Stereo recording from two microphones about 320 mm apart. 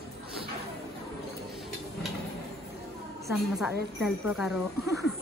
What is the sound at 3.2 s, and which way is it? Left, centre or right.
Speech, centre.